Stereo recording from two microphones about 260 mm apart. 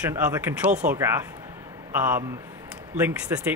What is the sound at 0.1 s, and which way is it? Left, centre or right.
Speech, centre.